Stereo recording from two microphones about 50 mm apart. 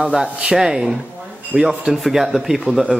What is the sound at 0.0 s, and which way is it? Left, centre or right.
A man's voice, centre.